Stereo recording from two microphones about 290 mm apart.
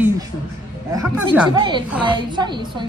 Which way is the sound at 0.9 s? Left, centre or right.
Centre.